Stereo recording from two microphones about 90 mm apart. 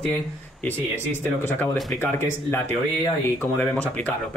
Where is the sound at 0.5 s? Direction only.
20° left (ahead or behind).